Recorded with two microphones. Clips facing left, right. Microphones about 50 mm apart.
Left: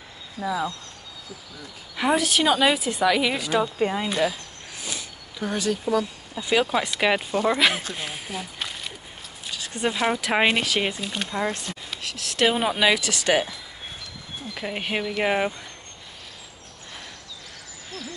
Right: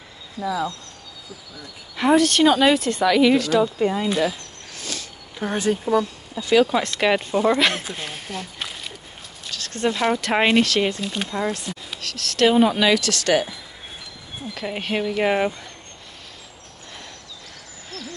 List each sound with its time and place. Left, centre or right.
0.4 s speech: centre
2.0 s speech: centre
4.1 s speech: centre
4.7 s a sound: centre
5.4 s speech: right
6.4 s speech: centre
9.5 s speech: centre
14.5 s speech: centre